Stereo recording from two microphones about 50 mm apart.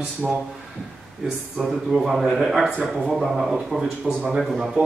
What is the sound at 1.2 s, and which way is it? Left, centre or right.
Speech, centre.